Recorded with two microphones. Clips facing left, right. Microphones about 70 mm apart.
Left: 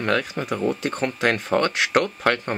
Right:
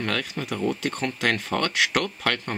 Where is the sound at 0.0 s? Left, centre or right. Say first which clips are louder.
Left 5 dB; left.